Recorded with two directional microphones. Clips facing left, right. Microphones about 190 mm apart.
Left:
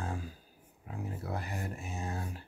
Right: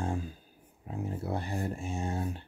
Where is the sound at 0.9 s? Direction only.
25° right (ahead or behind).